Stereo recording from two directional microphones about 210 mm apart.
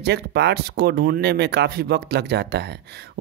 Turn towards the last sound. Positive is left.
turn(degrees=-50)  # may be behind; listen again after turning